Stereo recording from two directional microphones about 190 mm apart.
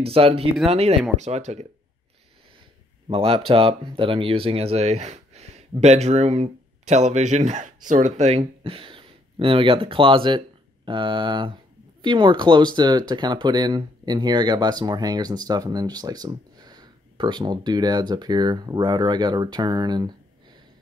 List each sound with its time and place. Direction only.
0.0 s speech: 30° right (ahead or behind)
3.1 s speech: 30° right (ahead or behind)